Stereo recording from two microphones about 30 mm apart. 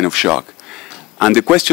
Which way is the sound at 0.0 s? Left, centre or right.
Centre.